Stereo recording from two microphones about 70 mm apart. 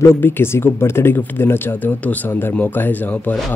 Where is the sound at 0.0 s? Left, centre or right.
Left.